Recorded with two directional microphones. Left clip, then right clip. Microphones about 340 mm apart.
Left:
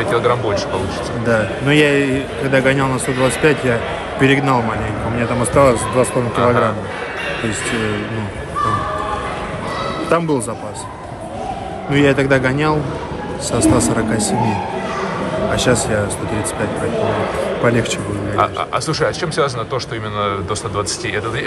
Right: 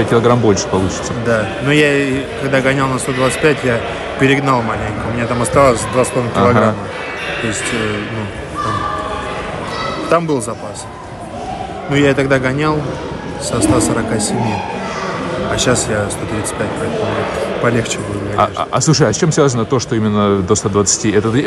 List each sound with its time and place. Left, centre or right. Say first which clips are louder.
0.1 s speech: right 4 dB; centre
1.2 s a man's voice: right 1 dB; centre
10.0 s speech: right 2 dB; centre
11.9 s a man's voice: right 1 dB; centre
15.5 s a man's voice: right 1 dB; centre
18.6 s speech: right 4 dB; centre